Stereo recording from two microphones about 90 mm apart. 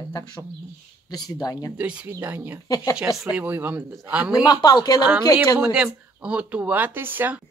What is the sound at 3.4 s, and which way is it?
Speech, 20° right (ahead or behind).